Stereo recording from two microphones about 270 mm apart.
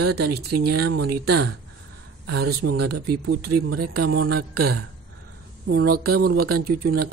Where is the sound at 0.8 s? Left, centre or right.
Right.